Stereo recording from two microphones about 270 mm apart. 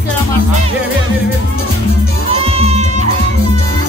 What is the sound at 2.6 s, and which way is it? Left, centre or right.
Music, right.